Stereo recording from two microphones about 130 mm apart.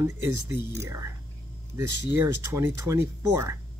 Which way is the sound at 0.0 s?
20° right (ahead or behind).